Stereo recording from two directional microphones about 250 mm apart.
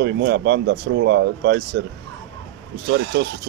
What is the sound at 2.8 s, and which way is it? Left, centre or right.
Speech, right.